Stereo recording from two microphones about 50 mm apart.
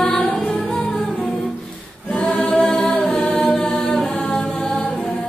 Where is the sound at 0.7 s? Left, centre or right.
Centre.